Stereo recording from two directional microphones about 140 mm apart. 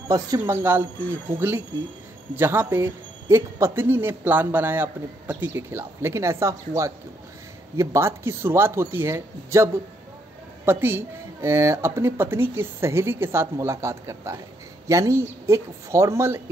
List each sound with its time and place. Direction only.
0.1 s a woman's voice: 20° right (ahead or behind)